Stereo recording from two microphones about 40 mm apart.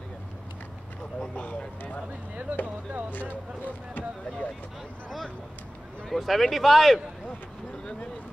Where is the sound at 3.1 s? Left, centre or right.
Left.